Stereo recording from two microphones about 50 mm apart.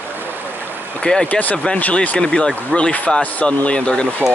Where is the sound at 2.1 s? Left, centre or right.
Centre.